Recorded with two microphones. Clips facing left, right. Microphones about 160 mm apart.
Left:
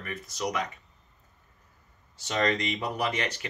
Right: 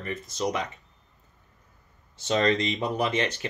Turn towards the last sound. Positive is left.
turn(degrees=-25)  # may be behind; listen again after turning